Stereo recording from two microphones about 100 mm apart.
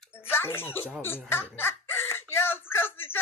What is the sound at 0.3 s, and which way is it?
Speech, 25° left (ahead or behind).